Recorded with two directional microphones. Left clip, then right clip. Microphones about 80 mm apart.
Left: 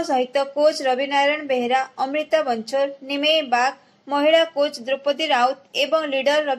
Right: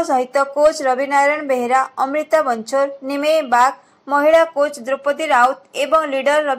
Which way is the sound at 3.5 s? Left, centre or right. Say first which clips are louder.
Right 6 dB; right.